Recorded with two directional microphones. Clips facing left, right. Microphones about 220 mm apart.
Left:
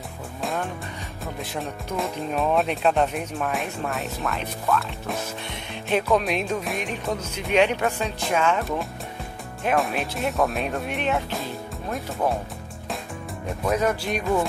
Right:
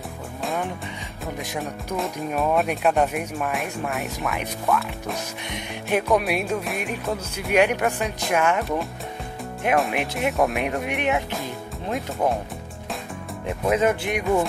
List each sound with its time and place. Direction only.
2.0 s speech: centre (ahead or behind)
5.5 s speech: 10° right (ahead or behind)
9.9 s speech: 15° right (ahead or behind)
13.7 s speech: 20° right (ahead or behind)